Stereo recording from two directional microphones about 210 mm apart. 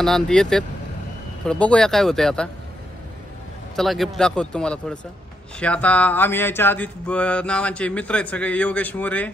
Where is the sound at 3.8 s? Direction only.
Centre (ahead or behind).